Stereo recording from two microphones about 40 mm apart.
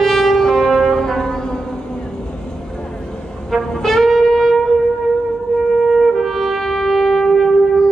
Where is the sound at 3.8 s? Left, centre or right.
Centre.